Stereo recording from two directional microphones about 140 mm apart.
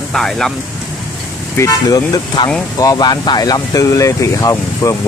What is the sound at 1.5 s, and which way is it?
Speech, 25° left (ahead or behind).